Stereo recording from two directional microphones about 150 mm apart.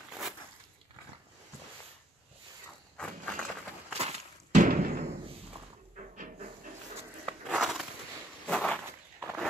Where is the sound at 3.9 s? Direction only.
50° right (ahead or behind).